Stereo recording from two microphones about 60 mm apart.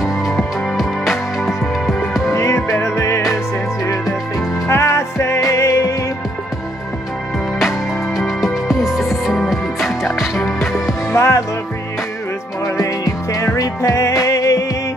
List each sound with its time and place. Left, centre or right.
0.0 s music: centre
2.3 s music: left
4.6 s music: left
8.6 s music: centre
11.1 s music: left
12.6 s music: left